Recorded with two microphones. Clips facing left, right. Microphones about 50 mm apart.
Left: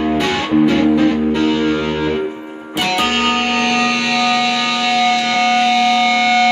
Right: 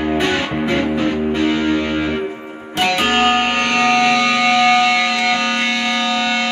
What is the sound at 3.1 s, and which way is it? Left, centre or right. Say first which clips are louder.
Music: right 1 dB; right.